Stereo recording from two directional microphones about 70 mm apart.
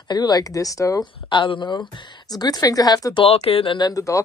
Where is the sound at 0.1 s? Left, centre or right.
Left.